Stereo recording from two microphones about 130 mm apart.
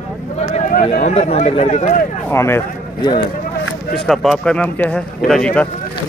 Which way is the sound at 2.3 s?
20° left (ahead or behind).